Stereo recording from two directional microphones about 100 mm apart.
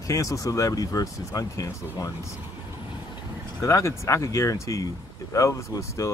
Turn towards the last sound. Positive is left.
turn(degrees=30)  # may be behind; listen again after turning